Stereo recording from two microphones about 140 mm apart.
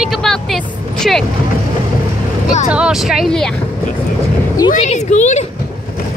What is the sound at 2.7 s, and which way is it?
Speech, 5° right (ahead or behind).